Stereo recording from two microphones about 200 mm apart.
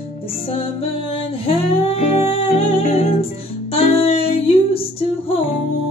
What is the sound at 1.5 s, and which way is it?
Music, 30° left (ahead or behind).